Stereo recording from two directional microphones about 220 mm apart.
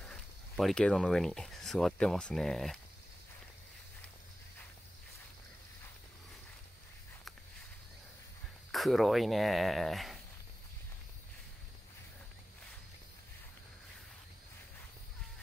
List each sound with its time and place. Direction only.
0.0 s speech: centre (ahead or behind)
8.7 s speech: centre (ahead or behind)